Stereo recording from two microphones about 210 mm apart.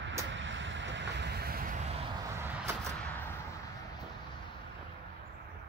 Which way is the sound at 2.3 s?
10° right (ahead or behind).